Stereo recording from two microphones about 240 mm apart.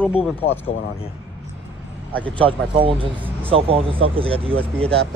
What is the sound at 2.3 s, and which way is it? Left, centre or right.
Speech, right.